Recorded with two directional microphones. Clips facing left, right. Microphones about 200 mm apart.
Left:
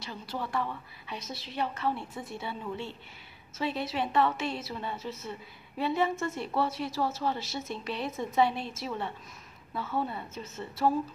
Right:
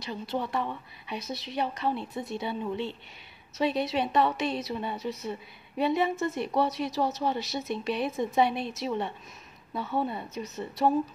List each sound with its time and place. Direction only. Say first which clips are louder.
0.0 s a woman's voice: right 5 dB; 20° right (ahead or behind)